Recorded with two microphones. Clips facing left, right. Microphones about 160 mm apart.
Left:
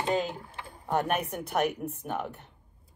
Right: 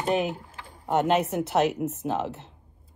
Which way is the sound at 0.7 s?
20° right (ahead or behind).